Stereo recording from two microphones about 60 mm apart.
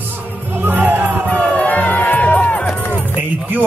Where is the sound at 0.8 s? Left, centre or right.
Right.